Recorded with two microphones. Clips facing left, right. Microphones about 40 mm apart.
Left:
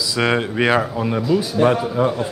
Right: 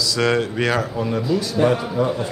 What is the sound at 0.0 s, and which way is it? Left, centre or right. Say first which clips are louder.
A man's voice: even; centre.